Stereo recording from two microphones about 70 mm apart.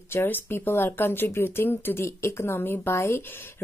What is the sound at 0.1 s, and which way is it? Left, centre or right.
Speech, left.